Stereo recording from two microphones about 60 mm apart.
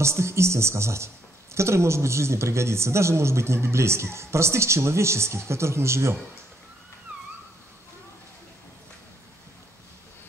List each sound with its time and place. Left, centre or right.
0.0 s speech: right